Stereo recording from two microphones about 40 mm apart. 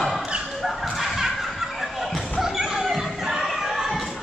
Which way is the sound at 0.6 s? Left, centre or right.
Centre.